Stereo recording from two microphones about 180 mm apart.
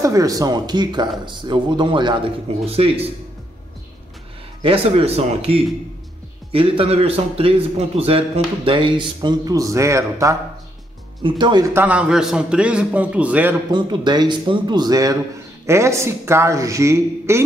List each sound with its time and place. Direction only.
0.0 s speech: 20° right (ahead or behind)
4.6 s a man's voice: 30° right (ahead or behind)
11.7 s a man's voice: 10° right (ahead or behind)
13.7 s a man's voice: 25° right (ahead or behind)